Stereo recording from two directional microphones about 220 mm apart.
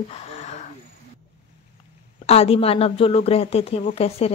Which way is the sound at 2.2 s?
25° left (ahead or behind).